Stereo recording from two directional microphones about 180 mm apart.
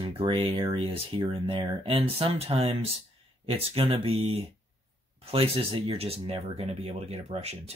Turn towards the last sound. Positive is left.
turn(degrees=-35)  # may be behind; listen again after turning